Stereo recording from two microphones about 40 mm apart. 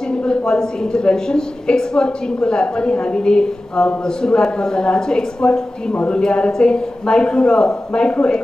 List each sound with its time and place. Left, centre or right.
0.1 s a woman's voice: left